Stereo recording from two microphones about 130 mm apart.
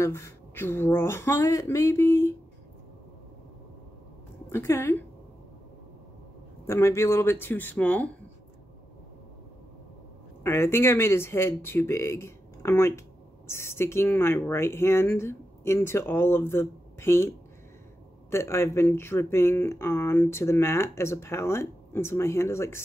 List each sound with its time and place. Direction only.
0.0 s speech: 20° left (ahead or behind)
4.5 s speech: 20° left (ahead or behind)
6.6 s speech: 20° left (ahead or behind)
10.4 s speech: 20° left (ahead or behind)
18.3 s speech: 20° left (ahead or behind)